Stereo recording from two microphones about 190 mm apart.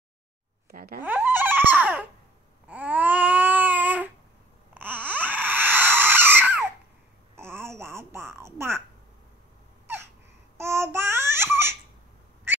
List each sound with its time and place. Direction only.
0.7 s speech: 50° right (ahead or behind)
1.0 s baby laughter: 10° right (ahead or behind)
2.7 s baby cry: 10° right (ahead or behind)
4.7 s wail: 10° right (ahead or behind)
7.3 s a sound: 15° right (ahead or behind)
10.6 s babbling: 15° right (ahead or behind)